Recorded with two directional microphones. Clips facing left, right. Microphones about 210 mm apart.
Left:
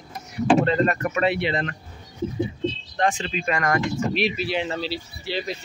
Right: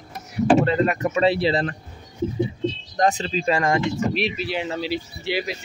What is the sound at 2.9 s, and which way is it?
Speech, 40° right (ahead or behind).